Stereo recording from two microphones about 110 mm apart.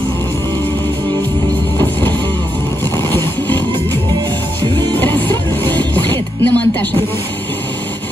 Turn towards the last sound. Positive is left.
turn(degrees=15)  # may be behind; listen again after turning